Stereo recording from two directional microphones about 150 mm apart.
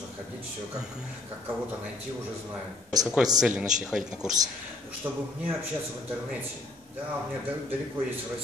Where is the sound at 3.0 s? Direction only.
5° right (ahead or behind).